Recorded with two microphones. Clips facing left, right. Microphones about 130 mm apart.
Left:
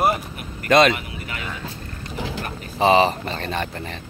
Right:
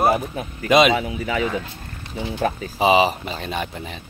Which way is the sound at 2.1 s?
90° left.